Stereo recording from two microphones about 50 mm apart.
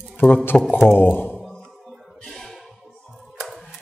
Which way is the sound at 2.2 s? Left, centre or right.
Centre.